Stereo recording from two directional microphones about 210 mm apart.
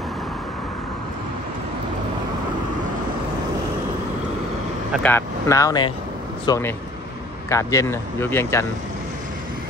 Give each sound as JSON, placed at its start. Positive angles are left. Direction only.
{"t": 4.9, "sound": "speech", "side_deg": 10}